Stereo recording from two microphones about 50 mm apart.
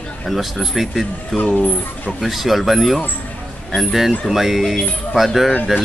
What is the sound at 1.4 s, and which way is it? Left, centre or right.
Speech, left.